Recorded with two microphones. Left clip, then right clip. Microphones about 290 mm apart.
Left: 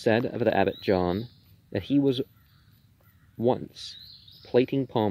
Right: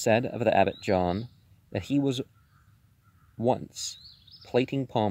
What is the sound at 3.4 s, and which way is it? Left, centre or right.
Speech, right.